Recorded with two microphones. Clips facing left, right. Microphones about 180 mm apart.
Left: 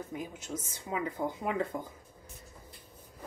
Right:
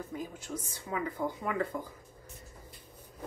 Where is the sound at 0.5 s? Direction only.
15° left (ahead or behind).